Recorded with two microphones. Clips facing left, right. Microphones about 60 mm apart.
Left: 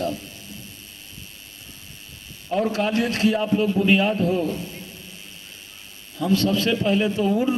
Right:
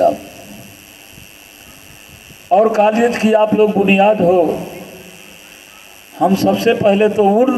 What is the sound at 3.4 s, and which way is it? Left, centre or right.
A man's voice, right.